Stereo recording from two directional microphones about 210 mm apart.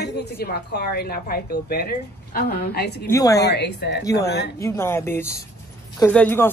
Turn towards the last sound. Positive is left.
turn(degrees=10)  # may be behind; listen again after turning